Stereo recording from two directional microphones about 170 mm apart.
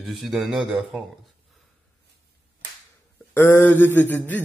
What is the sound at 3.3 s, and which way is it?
A man's voice, 15° left (ahead or behind).